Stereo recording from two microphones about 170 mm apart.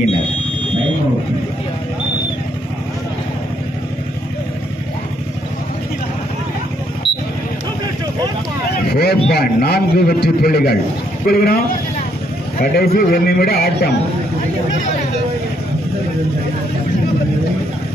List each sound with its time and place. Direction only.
8.9 s a man's voice: 70° left (ahead or behind)
12.7 s a man's voice: 60° left (ahead or behind)